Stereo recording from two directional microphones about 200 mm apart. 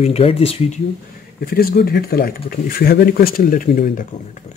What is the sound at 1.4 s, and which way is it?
Speech, 50° left (ahead or behind).